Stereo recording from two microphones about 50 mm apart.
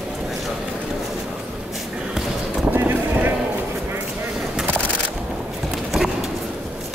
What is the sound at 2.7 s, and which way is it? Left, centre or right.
Clip-clop, right.